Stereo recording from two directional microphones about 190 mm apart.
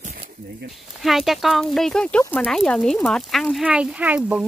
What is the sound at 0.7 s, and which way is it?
Speech, centre (ahead or behind).